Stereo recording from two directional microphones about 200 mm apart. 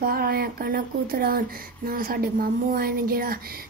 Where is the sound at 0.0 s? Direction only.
50° right (ahead or behind).